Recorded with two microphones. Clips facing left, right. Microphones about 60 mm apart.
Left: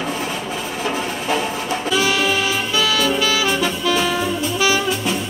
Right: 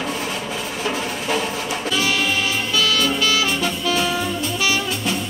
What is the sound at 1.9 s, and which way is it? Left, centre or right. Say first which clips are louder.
Music: left 3 dB; centre.